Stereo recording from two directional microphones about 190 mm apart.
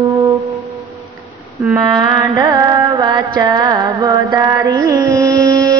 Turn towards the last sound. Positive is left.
turn(degrees=-20)  # may be behind; listen again after turning